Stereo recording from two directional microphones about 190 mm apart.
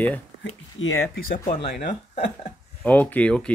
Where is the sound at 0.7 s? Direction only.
90° left.